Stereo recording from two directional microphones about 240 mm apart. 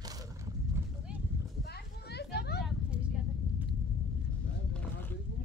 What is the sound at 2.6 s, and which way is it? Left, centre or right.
Vehicle, centre.